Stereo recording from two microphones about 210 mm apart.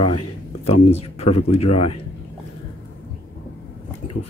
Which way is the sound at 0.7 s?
30° left (ahead or behind).